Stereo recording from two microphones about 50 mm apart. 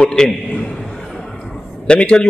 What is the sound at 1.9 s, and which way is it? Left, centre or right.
Speech, centre.